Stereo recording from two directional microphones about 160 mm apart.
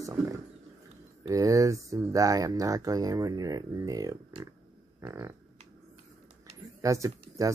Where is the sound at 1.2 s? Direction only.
20° right (ahead or behind).